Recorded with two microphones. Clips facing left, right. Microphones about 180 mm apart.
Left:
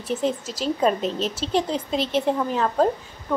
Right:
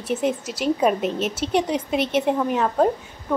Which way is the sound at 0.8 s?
10° right (ahead or behind).